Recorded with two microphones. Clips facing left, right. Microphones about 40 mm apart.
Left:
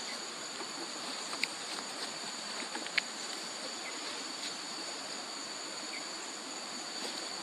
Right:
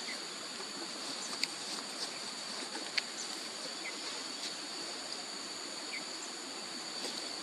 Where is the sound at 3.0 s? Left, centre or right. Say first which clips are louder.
Left 4 dB; left.